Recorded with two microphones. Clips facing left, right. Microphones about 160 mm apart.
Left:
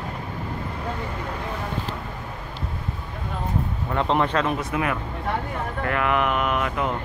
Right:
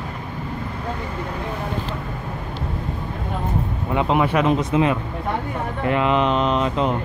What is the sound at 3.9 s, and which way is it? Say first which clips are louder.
Speech: right 3 dB; 10° right (ahead or behind).